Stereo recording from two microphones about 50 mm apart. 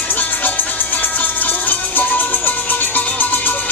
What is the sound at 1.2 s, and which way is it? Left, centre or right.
Music, left.